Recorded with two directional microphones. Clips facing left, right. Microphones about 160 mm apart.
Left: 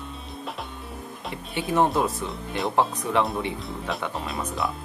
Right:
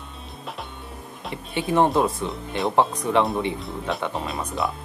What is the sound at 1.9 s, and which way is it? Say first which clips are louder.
Speech: right 3 dB; 25° right (ahead or behind).